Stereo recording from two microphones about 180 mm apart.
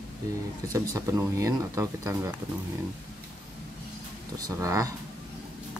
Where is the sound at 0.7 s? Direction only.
15° right (ahead or behind).